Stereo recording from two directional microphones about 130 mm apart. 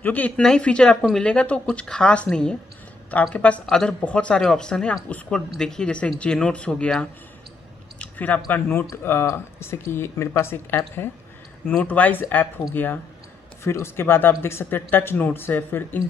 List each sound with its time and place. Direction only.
0.0 s speech: 10° left (ahead or behind)
8.0 s squish: 10° left (ahead or behind)
8.9 s speech: 20° left (ahead or behind)